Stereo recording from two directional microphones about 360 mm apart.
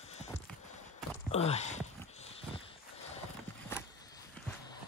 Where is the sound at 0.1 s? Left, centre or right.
Centre.